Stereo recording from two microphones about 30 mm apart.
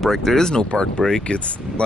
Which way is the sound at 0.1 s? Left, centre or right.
Centre.